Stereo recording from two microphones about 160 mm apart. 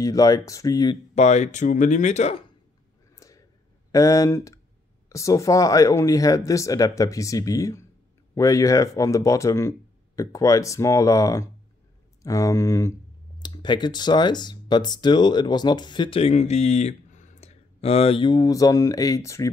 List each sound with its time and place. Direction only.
0.0 s speech: 20° left (ahead or behind)
1.1 s speech: 45° left (ahead or behind)
3.2 s a sound: 20° left (ahead or behind)
3.9 s speech: 20° left (ahead or behind)
13.4 s speech: 30° left (ahead or behind)